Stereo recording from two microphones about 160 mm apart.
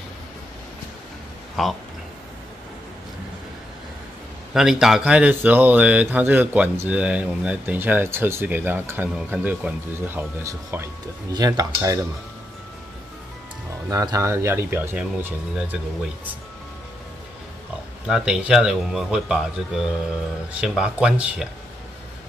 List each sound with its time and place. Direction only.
1.6 s speech: centre (ahead or behind)
4.6 s speech: 5° right (ahead or behind); by 12.0 s 20° right (ahead or behind)
13.8 s speech: 20° right (ahead or behind)
18.0 s speech: 5° right (ahead or behind)